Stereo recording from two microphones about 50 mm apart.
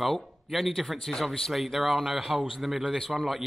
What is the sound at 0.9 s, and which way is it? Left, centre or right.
Speech, centre.